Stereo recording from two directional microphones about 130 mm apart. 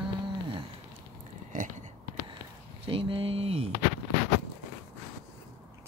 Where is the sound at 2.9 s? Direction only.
45° right (ahead or behind).